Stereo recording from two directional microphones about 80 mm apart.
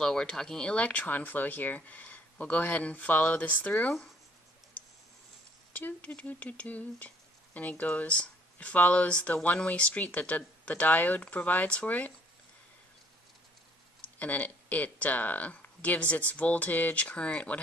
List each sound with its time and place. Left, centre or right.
0.0 s speech: centre
5.7 s speech: left
14.1 s speech: left